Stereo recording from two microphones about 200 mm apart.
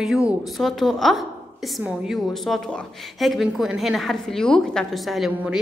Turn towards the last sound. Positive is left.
turn(degrees=-5)  # may be behind; listen again after turning